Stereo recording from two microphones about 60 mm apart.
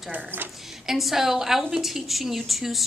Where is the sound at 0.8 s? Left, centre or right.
Centre.